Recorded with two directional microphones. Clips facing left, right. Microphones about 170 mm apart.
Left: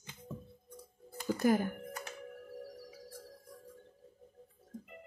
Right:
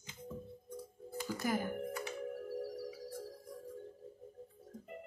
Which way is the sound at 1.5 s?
50° left (ahead or behind).